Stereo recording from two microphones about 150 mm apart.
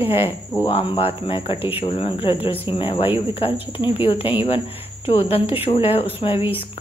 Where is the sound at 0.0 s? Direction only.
40° left (ahead or behind).